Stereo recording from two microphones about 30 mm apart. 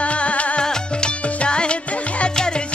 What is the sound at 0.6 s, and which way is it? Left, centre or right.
Music, left.